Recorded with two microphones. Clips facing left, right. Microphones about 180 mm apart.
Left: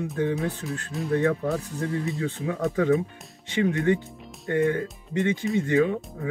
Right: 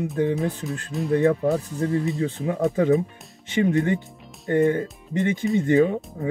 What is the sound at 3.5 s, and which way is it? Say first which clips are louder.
Speech: right 2 dB; 20° right (ahead or behind).